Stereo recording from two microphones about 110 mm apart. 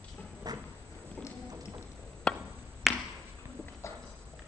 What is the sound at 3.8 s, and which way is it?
Clip-clop, 25° left (ahead or behind).